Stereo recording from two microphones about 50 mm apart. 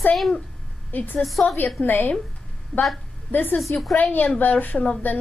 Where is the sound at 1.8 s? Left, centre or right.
Left.